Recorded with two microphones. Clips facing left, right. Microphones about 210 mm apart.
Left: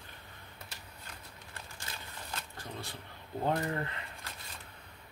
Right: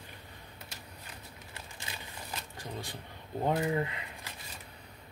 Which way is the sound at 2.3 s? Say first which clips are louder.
Right 2 dB; 15° right (ahead or behind).